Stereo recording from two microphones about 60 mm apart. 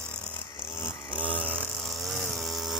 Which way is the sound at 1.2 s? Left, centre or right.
Left.